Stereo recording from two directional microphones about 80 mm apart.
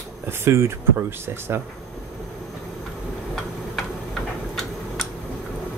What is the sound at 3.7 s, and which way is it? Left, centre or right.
Tick-tock, centre.